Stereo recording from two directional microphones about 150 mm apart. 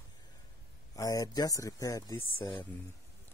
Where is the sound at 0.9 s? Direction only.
20° left (ahead or behind).